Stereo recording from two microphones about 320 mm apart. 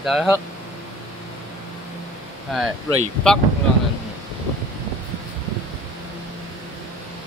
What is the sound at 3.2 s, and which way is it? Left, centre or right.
Speech, centre.